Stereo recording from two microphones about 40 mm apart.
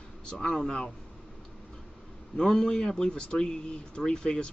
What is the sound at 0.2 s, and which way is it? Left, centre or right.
Speech, centre.